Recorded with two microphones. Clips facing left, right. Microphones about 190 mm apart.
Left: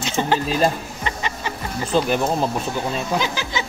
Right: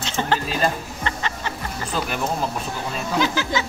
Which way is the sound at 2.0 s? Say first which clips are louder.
Left 8 dB; 30° left (ahead or behind).